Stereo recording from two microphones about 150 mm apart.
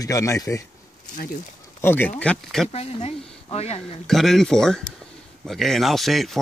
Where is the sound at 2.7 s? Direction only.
45° left (ahead or behind).